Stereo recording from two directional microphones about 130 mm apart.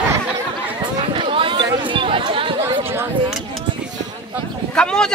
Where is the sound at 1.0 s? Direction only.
45° right (ahead or behind).